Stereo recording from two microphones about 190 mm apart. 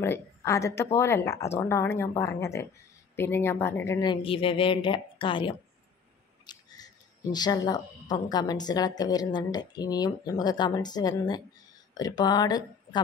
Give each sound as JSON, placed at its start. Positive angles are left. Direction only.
{"t": 0.0, "sound": "a woman's voice", "side_deg": 15}